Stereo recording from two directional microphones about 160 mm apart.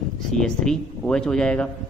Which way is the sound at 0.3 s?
5° left (ahead or behind).